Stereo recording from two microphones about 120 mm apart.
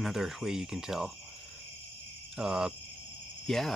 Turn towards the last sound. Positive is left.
turn(degrees=5)  # may be behind; listen again after turning